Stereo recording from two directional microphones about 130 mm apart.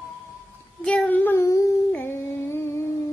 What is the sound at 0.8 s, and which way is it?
Child singing, 10° left (ahead or behind).